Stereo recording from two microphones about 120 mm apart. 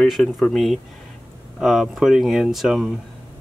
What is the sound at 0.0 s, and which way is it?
Speech, 5° left (ahead or behind).